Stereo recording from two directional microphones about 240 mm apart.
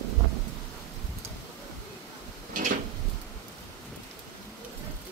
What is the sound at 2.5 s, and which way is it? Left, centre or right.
Drawer open or close, right.